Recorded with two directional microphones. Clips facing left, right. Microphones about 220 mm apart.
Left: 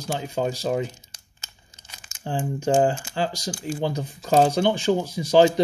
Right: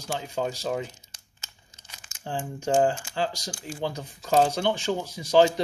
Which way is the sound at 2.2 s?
10° left (ahead or behind).